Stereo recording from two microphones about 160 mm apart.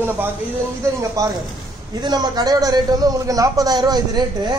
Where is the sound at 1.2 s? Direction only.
20° right (ahead or behind).